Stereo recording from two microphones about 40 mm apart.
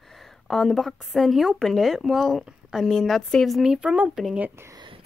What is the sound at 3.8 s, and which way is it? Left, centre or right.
Speech, right.